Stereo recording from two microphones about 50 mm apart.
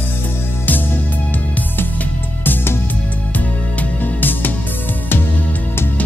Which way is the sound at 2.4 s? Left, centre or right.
Left.